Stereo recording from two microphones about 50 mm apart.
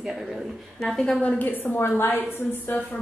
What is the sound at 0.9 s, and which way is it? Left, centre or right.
Speech, centre.